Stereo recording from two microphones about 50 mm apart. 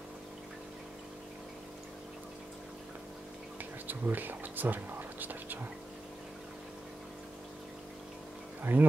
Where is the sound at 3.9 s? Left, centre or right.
Right.